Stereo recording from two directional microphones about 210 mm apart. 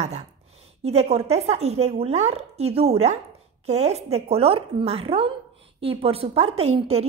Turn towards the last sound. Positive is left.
turn(degrees=-30)  # may be behind; listen again after turning